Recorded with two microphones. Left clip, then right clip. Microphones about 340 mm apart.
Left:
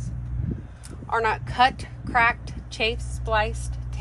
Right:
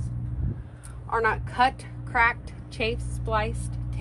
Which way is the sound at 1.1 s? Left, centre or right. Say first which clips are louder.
Left 1 dB; left.